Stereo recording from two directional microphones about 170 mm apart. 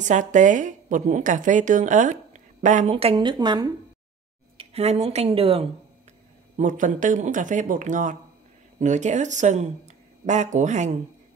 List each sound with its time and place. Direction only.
0.0 s a woman's voice: 45° right (ahead or behind); by 3.7 s 25° right (ahead or behind)
4.6 s speech: 35° right (ahead or behind)
6.5 s a woman's voice: 50° right (ahead or behind)